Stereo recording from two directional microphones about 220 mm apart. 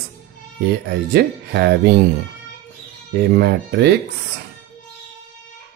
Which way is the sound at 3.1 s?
50° right (ahead or behind).